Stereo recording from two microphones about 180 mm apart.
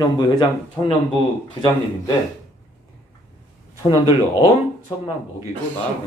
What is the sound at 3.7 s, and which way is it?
Speech, 15° right (ahead or behind).